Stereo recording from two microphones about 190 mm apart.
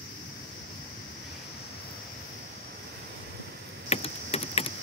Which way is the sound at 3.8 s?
35° left (ahead or behind).